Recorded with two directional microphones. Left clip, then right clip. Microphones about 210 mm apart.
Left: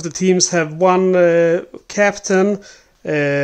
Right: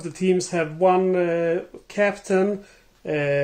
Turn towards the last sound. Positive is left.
turn(degrees=40)  # may be behind; listen again after turning